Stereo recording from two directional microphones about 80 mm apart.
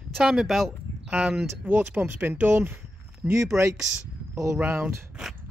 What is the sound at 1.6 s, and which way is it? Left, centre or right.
Speech, right.